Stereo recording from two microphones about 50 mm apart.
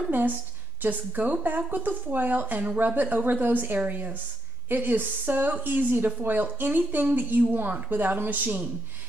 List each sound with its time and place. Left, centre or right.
0.8 s speech: right